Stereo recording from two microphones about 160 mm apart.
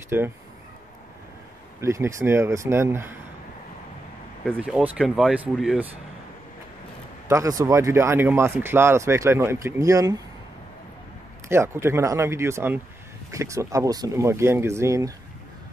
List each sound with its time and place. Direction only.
0.1 s speech: 15° right (ahead or behind)
1.8 s speech: 20° right (ahead or behind)
4.6 s speech: 10° right (ahead or behind)
7.2 s speech: 20° right (ahead or behind)
11.4 s speech: 15° right (ahead or behind)